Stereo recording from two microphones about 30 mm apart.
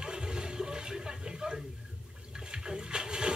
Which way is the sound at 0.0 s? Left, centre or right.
Right.